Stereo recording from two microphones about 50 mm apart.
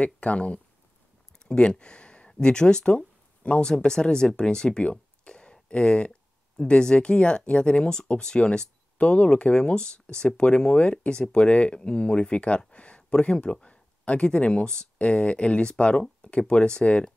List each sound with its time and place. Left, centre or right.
0.0 s speech: left
1.4 s a sound: centre
2.4 s speech: centre